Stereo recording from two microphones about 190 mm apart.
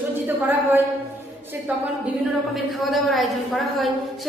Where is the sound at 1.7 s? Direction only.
10° right (ahead or behind).